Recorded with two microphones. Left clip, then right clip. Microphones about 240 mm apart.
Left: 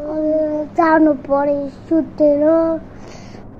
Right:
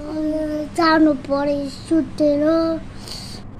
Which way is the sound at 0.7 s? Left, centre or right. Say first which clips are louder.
Left 2 dB; right.